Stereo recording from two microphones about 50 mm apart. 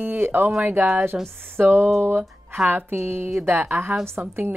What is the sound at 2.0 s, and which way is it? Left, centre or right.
A woman's voice, right.